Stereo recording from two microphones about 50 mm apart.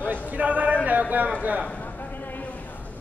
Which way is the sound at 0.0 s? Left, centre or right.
Right.